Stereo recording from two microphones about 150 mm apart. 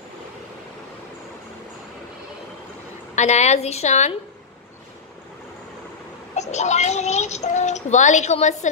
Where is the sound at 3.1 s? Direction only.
50° left (ahead or behind).